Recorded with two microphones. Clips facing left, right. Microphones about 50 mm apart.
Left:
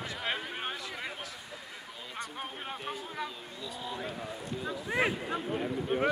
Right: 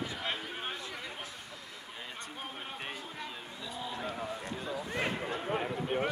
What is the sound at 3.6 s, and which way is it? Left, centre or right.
Vehicle, centre.